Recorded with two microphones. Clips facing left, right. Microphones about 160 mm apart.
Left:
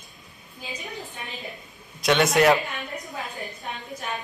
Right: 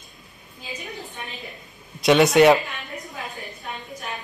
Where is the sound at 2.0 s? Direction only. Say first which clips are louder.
Right 5 dB; centre (ahead or behind).